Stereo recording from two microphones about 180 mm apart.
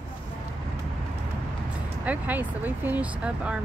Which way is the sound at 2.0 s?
10° right (ahead or behind).